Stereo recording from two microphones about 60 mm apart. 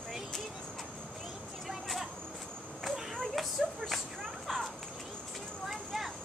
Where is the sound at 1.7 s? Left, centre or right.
Centre.